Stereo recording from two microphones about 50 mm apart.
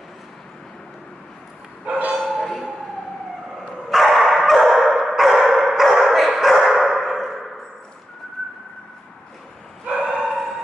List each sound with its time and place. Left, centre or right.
1.9 s bow-wow: right
2.1 s bow-wow: centre
3.9 s dog: centre
9.8 s bow-wow: centre
10.1 s bow-wow: centre